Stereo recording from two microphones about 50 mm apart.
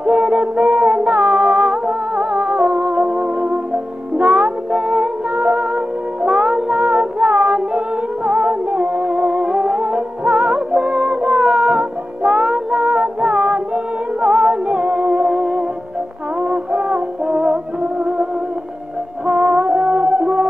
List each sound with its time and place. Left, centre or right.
0.0 s music: centre
5.3 s music: right
7.7 s music: centre
17.3 s music: centre
17.9 s music: right